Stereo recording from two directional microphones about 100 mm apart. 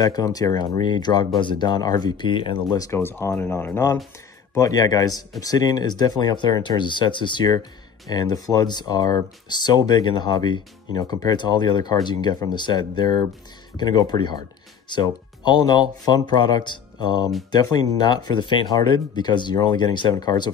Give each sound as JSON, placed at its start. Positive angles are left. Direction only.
{"t": 0.0, "sound": "speech", "side_deg": 40}
{"t": 2.8, "sound": "speech", "side_deg": 25}
{"t": 4.6, "sound": "speech", "side_deg": 40}